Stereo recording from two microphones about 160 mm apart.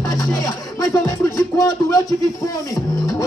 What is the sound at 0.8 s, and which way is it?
Music, 20° left (ahead or behind).